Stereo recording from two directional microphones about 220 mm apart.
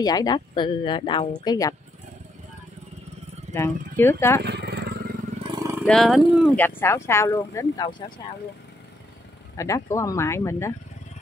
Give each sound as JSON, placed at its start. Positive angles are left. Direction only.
{"t": 0.0, "sound": "speech", "side_deg": 15}
{"t": 3.5, "sound": "speech", "side_deg": 10}
{"t": 4.4, "sound": "vehicle", "side_deg": -50}
{"t": 5.4, "sound": "vehicle", "side_deg": -20}
{"t": 5.9, "sound": "speech", "side_deg": 0}
{"t": 9.6, "sound": "speech", "side_deg": 15}